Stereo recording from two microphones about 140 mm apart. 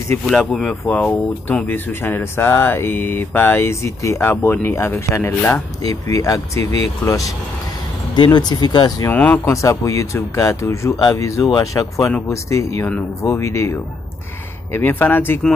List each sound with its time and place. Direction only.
0.2 s speech: 5° left (ahead or behind); by 6.6 s 25° left (ahead or behind)
6.6 s speech: 45° right (ahead or behind)
8.2 s speech: 30° left (ahead or behind)
9.1 s speech: 10° left (ahead or behind)
9.6 s speech: 20° left (ahead or behind)